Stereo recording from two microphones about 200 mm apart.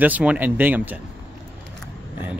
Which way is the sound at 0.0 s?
5° right (ahead or behind).